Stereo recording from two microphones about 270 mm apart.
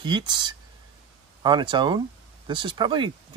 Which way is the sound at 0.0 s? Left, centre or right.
Centre.